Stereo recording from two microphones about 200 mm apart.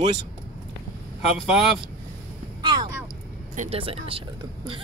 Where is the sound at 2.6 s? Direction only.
20° right (ahead or behind).